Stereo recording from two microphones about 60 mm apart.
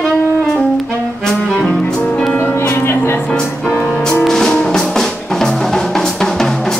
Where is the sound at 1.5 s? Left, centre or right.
Centre.